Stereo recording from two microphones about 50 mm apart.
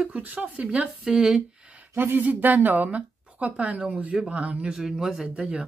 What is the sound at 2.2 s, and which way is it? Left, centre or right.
Speech, right.